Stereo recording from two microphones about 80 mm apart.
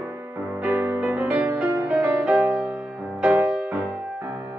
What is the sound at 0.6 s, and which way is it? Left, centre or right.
Music, right.